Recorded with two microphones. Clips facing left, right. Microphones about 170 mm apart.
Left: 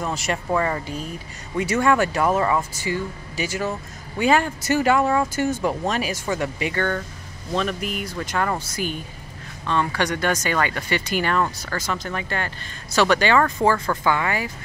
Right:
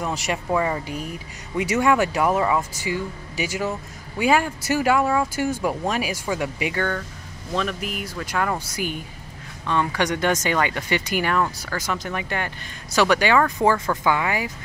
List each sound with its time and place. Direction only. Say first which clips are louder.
0.0 s speech: even; 15° right (ahead or behind)